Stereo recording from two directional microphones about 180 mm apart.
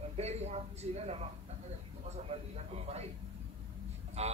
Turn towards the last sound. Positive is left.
turn(degrees=-35)  # may be behind; listen again after turning